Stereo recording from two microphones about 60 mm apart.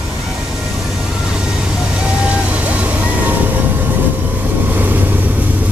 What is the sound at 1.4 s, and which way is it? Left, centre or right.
Vehicle, centre.